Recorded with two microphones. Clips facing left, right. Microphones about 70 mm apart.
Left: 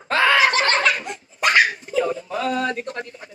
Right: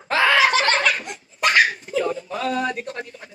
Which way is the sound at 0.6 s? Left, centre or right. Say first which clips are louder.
Left 1 dB; centre.